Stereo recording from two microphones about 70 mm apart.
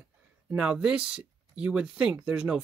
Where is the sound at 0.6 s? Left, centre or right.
Centre.